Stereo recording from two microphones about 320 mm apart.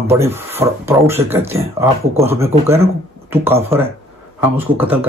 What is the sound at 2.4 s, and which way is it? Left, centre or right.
Speech, centre.